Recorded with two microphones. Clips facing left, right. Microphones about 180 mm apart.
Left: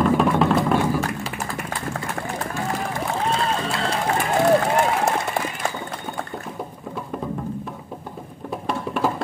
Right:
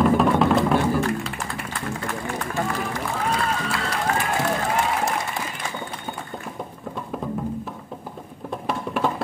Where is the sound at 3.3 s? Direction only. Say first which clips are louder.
Left 2 dB; 25° left (ahead or behind).